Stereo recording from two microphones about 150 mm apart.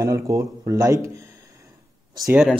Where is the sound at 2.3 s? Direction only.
5° right (ahead or behind).